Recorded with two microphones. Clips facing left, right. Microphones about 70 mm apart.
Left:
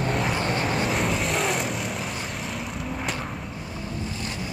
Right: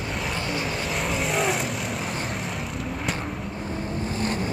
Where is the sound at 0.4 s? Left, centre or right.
Left.